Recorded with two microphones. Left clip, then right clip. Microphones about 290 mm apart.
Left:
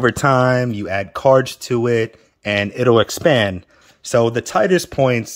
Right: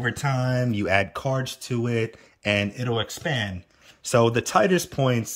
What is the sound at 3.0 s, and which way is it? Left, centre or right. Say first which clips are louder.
Speech: left 13 dB; centre.